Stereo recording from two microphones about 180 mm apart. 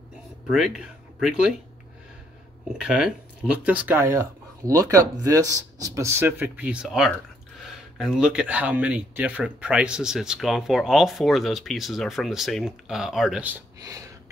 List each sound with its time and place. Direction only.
0.5 s speech: 5° right (ahead or behind)
2.7 s speech: 5° right (ahead or behind)
13.7 s speech: 20° right (ahead or behind)